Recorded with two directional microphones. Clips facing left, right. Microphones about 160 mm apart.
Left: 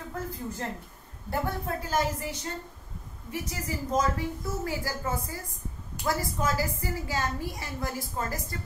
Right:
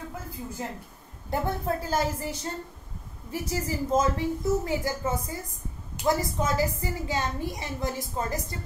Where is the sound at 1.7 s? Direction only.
35° right (ahead or behind).